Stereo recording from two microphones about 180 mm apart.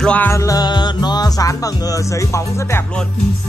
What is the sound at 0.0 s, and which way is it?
Music, 10° left (ahead or behind).